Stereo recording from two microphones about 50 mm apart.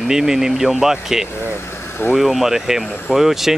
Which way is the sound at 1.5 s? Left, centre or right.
Left.